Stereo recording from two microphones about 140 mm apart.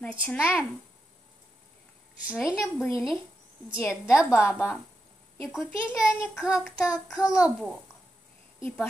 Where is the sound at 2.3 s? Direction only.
5° right (ahead or behind).